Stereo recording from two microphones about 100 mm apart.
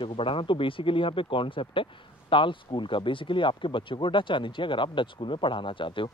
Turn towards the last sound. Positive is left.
turn(degrees=55)  # may be behind; listen again after turning